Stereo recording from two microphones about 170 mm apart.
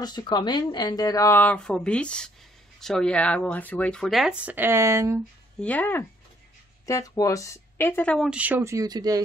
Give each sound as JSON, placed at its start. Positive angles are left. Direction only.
{"t": 0.0, "sound": "speech", "side_deg": 25}
{"t": 5.6, "sound": "speech", "side_deg": 10}
{"t": 8.3, "sound": "speech", "side_deg": -10}